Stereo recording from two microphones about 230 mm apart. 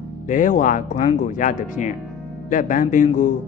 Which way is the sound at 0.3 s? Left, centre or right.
Left.